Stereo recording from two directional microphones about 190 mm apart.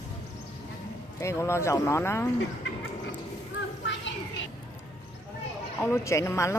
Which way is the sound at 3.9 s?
75° left (ahead or behind).